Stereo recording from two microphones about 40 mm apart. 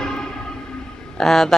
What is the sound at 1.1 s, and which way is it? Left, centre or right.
Speech, centre.